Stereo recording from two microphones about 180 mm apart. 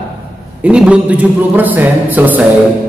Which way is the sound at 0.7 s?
5° right (ahead or behind).